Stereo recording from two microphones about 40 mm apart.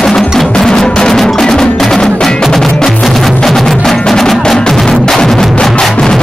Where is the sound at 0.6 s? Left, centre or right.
Centre.